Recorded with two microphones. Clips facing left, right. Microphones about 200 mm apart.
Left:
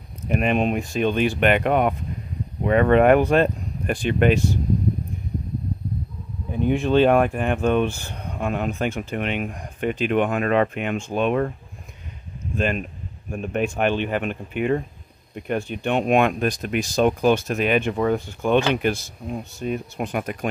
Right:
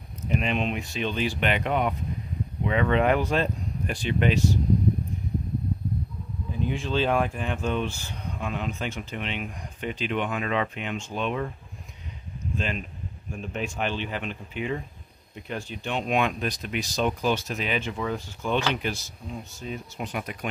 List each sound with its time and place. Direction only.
0.3 s speech: 55° left (ahead or behind)
6.5 s speech: 60° left (ahead or behind)
12.5 s speech: 55° left (ahead or behind)